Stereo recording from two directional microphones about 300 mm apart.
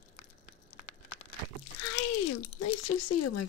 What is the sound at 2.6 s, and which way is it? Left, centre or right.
Speech, left.